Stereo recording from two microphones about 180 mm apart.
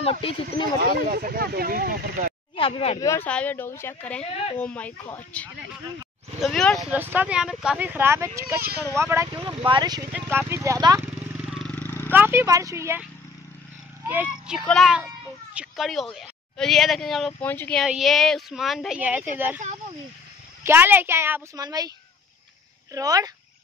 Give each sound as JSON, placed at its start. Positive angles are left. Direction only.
{"t": 0.0, "sound": "speech", "side_deg": 30}
{"t": 0.7, "sound": "speech", "side_deg": -55}
{"t": 2.5, "sound": "speech", "side_deg": 30}
{"t": 3.0, "sound": "speech", "side_deg": 15}
{"t": 7.0, "sound": "a woman's voice", "side_deg": -10}
{"t": 11.3, "sound": "vehicle", "side_deg": 0}
{"t": 11.7, "sound": "a sound", "side_deg": 10}
{"t": 12.1, "sound": "a woman's voice", "side_deg": -10}
{"t": 14.0, "sound": "a woman's voice", "side_deg": -10}
{"t": 20.6, "sound": "a woman's voice", "side_deg": -10}
{"t": 22.9, "sound": "speech", "side_deg": -20}